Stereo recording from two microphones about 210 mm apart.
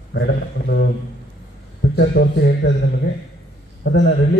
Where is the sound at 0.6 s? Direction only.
45° left (ahead or behind).